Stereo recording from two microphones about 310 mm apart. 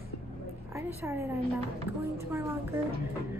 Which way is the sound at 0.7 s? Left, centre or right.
Centre.